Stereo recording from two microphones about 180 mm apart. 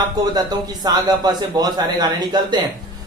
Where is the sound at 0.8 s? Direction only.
25° right (ahead or behind).